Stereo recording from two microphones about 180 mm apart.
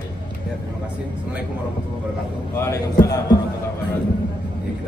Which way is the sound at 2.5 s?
15° left (ahead or behind).